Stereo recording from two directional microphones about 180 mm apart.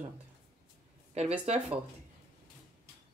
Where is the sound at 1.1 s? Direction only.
35° right (ahead or behind).